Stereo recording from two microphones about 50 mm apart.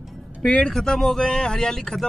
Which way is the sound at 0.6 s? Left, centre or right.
Centre.